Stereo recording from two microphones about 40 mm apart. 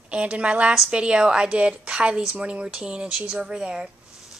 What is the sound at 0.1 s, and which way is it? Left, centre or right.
A woman's voice, right.